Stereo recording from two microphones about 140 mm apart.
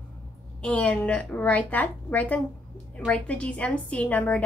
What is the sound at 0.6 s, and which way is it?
A woman's voice, 10° left (ahead or behind).